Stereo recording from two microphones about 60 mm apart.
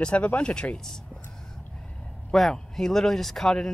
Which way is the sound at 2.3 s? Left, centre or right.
Centre.